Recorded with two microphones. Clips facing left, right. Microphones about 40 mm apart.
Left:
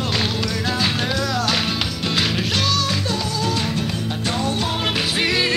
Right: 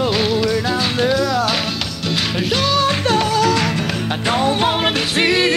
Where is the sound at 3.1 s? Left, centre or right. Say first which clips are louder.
Right 8 dB; right.